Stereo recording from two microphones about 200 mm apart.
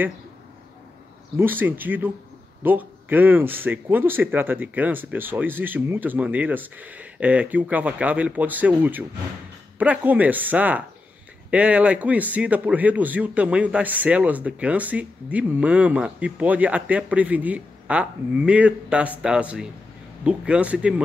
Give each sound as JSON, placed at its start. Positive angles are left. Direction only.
{"t": 1.3, "sound": "a man's voice", "side_deg": -10}